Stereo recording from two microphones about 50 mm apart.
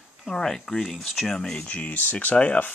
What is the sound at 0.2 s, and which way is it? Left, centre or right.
Speech, centre.